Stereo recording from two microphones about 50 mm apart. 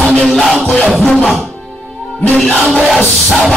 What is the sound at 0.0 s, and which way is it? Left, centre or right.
Music, left.